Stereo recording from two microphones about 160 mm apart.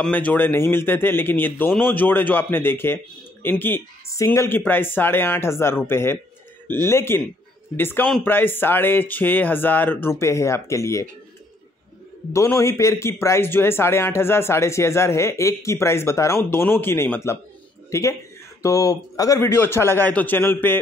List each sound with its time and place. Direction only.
0.0 s speech: 10° left (ahead or behind)
12.3 s speech: 20° left (ahead or behind)
18.6 s speech: 20° left (ahead or behind)